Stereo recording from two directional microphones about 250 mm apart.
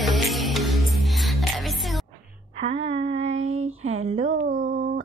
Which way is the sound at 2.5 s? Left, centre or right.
Right.